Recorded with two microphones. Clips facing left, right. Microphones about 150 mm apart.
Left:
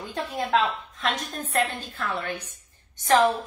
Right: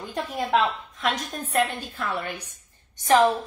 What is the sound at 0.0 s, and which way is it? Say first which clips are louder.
A woman's voice: right 1 dB; 15° right (ahead or behind).